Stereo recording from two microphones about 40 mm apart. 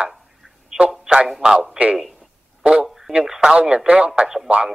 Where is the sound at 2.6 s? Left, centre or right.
Right.